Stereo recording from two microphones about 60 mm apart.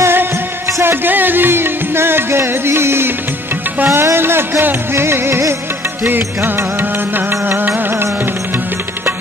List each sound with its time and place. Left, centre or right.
0.0 s music: right